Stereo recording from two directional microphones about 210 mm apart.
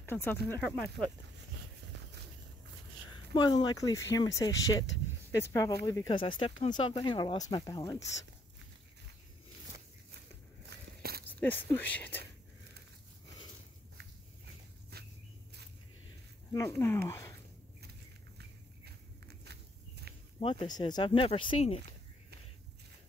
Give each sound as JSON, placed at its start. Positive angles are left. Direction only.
{"t": 0.0, "sound": "speech", "side_deg": 10}
{"t": 3.3, "sound": "speech", "side_deg": 20}
{"t": 11.0, "sound": "walk", "side_deg": -45}
{"t": 11.3, "sound": "speech", "side_deg": 10}
{"t": 16.5, "sound": "speech", "side_deg": 15}
{"t": 19.2, "sound": "walk", "side_deg": -50}
{"t": 20.3, "sound": "speech", "side_deg": 25}